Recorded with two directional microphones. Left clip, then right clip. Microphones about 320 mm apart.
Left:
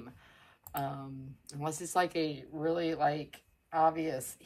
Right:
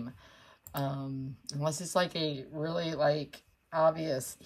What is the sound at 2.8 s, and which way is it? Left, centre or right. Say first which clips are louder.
Speech: right 5 dB; centre.